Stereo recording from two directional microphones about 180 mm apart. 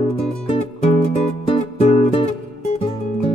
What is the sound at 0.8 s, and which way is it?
Music, 30° left (ahead or behind).